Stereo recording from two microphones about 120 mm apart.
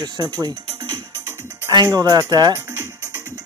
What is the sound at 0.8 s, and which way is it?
Music, 35° right (ahead or behind).